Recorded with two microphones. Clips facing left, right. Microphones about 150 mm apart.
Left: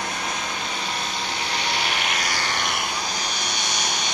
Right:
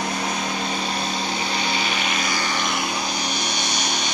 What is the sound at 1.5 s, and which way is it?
Vehicle, 70° left (ahead or behind).